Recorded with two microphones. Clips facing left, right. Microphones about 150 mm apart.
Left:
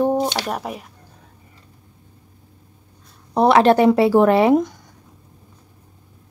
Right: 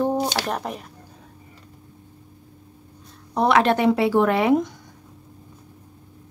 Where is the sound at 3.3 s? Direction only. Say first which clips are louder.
Left 5 dB; 35° left (ahead or behind).